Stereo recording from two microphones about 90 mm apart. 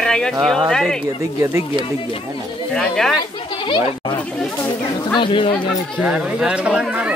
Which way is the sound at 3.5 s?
70° left (ahead or behind).